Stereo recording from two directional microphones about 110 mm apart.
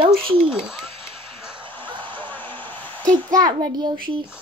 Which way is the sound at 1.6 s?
50° right (ahead or behind).